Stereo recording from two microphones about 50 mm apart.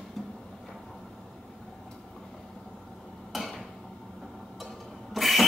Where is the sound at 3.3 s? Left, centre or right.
Centre.